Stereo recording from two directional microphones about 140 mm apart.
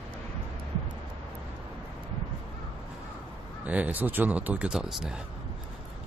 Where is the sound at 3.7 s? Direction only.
10° right (ahead or behind).